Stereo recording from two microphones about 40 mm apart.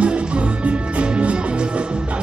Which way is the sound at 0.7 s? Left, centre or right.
Right.